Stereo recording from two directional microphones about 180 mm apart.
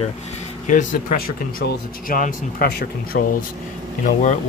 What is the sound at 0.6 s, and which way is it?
Speech, 45° left (ahead or behind).